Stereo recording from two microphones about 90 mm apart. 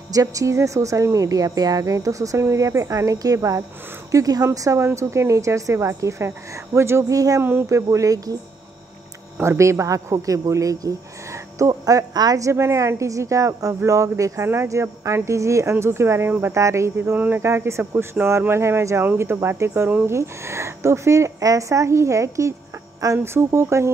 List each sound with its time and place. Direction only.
0.1 s speech: 40° right (ahead or behind)
9.4 s speech: 30° right (ahead or behind)